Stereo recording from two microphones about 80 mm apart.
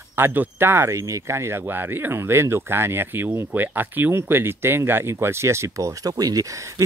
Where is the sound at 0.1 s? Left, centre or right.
Right.